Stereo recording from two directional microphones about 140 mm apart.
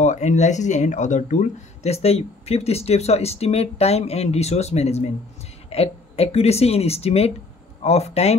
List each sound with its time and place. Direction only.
0.0 s speech: 60° left (ahead or behind)